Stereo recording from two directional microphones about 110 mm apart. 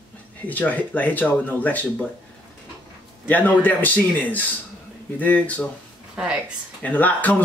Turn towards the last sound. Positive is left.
turn(degrees=15)  # may be behind; listen again after turning